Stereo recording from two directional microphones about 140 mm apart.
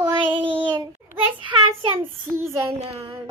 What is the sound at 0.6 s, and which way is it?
Child singing, 30° right (ahead or behind).